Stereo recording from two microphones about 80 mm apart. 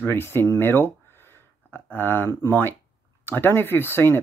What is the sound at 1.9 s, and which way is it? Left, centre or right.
Speech, left.